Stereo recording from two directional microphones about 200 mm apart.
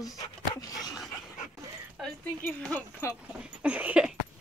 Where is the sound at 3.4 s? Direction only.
5° right (ahead or behind).